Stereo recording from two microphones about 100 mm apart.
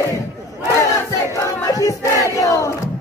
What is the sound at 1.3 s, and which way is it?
Battle cry, 35° left (ahead or behind).